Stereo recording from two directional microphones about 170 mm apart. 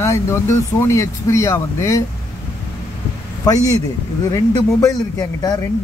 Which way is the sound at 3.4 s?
20° left (ahead or behind).